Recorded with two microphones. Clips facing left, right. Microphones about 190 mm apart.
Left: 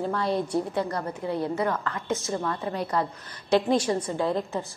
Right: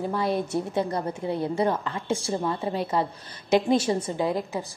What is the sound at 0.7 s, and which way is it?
A woman's voice, 20° right (ahead or behind).